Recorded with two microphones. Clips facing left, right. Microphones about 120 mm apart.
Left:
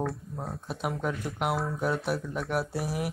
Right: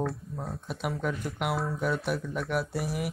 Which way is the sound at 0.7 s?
45° left (ahead or behind).